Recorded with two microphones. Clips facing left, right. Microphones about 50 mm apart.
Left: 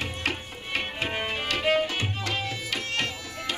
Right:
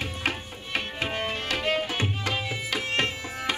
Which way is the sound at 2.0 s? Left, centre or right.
Right.